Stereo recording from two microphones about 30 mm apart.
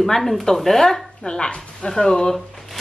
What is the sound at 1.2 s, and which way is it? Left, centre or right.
Speech, left.